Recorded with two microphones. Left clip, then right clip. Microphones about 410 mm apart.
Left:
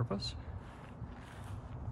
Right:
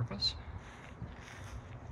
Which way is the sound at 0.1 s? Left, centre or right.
Centre.